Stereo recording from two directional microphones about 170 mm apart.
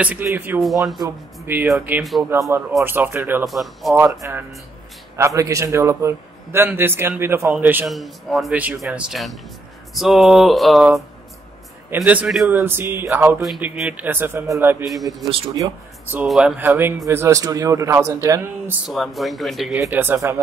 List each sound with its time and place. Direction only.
0.0 s speech: 10° right (ahead or behind)
0.6 s speech: centre (ahead or behind)
3.4 s speech: centre (ahead or behind)
3.9 s speech: 15° right (ahead or behind)
15.2 s speech: 35° right (ahead or behind)
15.5 s speech: 20° right (ahead or behind)
16.2 s speech: 5° right (ahead or behind)
18.9 s speech: centre (ahead or behind)
19.8 s speech: 10° right (ahead or behind)